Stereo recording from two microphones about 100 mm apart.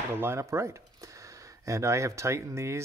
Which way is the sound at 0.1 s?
25° right (ahead or behind).